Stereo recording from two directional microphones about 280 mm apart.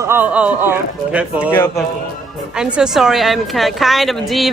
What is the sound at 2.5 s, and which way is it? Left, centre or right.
A woman's voice, centre.